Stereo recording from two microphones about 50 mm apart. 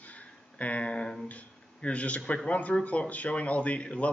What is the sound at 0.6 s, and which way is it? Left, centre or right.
Speech, left.